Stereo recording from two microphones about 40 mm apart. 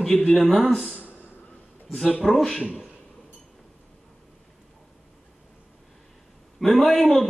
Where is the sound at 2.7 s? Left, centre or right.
Right.